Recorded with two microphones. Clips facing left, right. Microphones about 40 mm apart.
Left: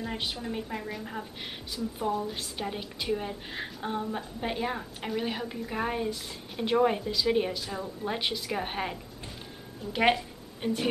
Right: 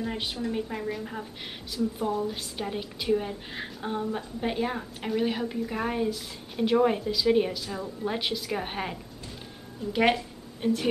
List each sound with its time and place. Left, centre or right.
0.0 s a woman's voice: centre